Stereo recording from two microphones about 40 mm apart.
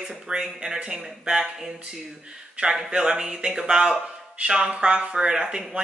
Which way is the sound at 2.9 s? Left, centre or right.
Centre.